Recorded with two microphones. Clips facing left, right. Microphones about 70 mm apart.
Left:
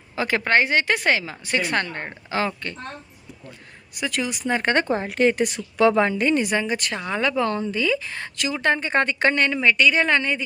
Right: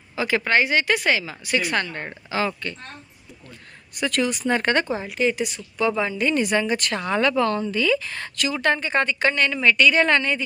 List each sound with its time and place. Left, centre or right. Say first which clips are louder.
0.1 s speech: left 1 dB; left
3.9 s a woman's voice: right 3 dB; centre
4.7 s speech: left 2 dB; left
6.4 s speech: right 2 dB; centre
9.6 s a woman's voice: right 1 dB; centre